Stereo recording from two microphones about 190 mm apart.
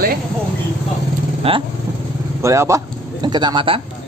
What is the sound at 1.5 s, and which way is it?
Speech, 30° right (ahead or behind).